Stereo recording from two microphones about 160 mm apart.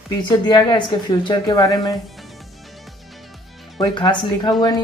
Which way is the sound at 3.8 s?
30° left (ahead or behind).